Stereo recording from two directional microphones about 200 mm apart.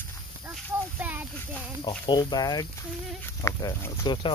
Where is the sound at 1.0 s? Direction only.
10° right (ahead or behind).